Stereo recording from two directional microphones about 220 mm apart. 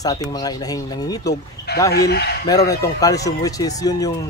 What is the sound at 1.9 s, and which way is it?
Speech, 45° left (ahead or behind).